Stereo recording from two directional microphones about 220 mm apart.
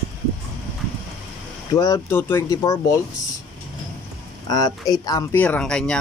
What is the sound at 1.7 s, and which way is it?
Speech, 15° left (ahead or behind).